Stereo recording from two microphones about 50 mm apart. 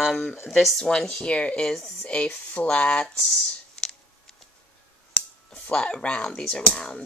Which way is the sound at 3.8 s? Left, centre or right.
Centre.